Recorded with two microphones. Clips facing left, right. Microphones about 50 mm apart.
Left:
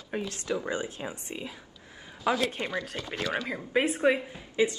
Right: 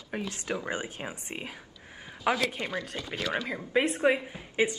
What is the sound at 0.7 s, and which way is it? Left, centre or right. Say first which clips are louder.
Speech: left 1 dB; right.